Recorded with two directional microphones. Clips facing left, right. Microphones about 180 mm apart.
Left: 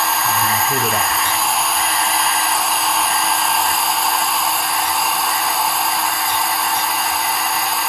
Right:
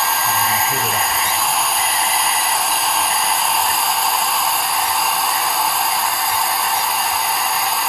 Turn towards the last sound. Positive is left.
turn(degrees=0)  # may be behind; listen again after turning